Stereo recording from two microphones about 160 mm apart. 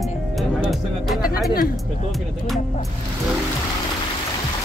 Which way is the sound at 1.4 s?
65° left (ahead or behind).